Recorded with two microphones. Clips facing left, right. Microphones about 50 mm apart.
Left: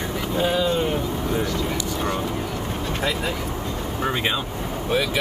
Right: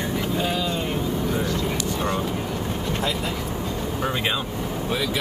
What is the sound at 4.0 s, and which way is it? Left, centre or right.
Speech, centre.